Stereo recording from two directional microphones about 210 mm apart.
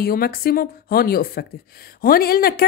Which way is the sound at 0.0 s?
45° left (ahead or behind).